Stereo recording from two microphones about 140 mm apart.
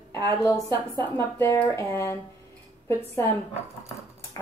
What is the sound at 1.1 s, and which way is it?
A woman's voice, 20° left (ahead or behind).